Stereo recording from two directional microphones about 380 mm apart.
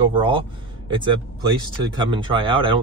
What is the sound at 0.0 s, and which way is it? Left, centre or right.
Speech, centre.